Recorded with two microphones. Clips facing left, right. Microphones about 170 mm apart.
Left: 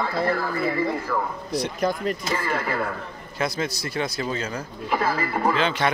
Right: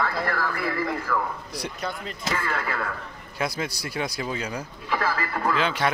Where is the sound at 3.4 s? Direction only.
10° right (ahead or behind).